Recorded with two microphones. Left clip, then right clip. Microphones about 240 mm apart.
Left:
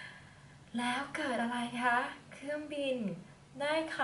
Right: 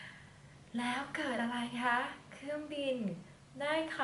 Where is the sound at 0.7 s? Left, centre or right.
Centre.